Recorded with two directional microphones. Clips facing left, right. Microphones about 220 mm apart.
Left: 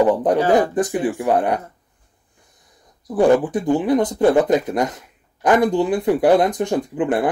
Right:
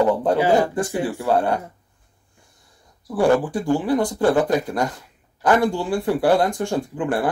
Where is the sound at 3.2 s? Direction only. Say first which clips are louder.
Left 3 dB; 20° left (ahead or behind).